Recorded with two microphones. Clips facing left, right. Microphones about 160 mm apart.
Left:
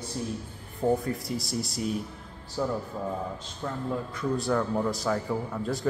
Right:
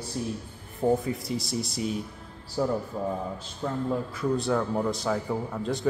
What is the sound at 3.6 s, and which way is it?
Speech, 15° right (ahead or behind).